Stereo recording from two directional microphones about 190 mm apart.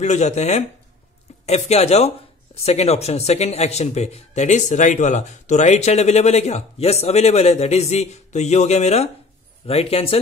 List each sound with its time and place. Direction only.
0.0 s speech: 35° left (ahead or behind)